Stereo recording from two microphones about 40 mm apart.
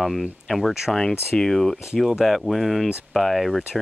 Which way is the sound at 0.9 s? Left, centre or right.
Centre.